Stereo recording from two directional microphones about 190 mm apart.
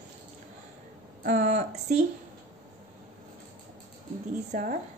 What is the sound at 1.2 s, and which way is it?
Speech, 40° right (ahead or behind).